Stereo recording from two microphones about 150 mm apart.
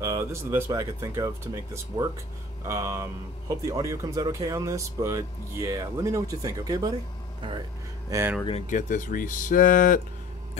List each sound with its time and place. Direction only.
0.0 s speech: 20° right (ahead or behind)
8.1 s speech: 20° right (ahead or behind)
8.6 s speech: 60° left (ahead or behind)